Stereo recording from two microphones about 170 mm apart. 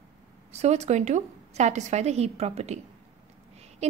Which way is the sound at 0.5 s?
40° right (ahead or behind).